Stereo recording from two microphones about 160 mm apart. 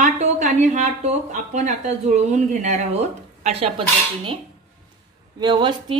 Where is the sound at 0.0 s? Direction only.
50° right (ahead or behind).